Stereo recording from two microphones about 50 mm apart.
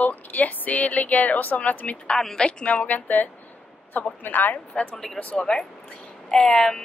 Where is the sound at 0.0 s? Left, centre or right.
Left.